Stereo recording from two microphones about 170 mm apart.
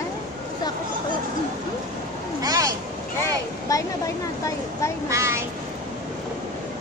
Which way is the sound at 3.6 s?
20° left (ahead or behind).